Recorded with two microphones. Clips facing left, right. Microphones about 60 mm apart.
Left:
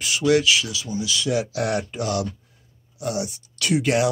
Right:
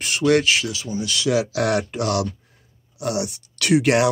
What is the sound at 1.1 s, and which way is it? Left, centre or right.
Speech, right.